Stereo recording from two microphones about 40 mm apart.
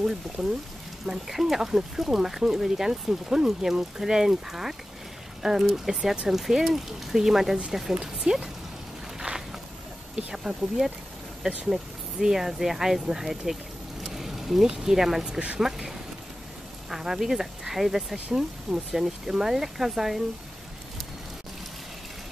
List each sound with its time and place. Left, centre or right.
0.4 s speech: centre
10.1 s speech: centre
14.0 s vehicle: centre
14.7 s speech: centre
15.3 s speech: right
15.6 s speech: centre